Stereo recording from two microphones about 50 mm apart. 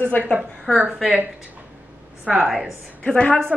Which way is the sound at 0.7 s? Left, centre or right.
Centre.